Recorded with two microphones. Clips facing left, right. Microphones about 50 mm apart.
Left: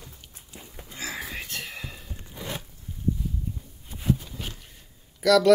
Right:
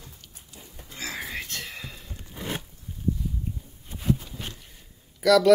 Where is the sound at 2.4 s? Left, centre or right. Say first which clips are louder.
Right 2 dB; right.